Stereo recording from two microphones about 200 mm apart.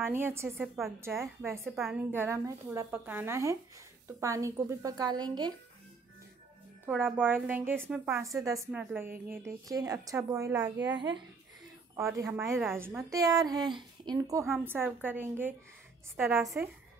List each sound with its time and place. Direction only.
0.0 s a woman's voice: 10° right (ahead or behind)
0.6 s a woman's voice: centre (ahead or behind)
1.0 s a woman's voice: 15° right (ahead or behind)
6.9 s a woman's voice: 10° right (ahead or behind)
8.2 s a woman's voice: 15° right (ahead or behind)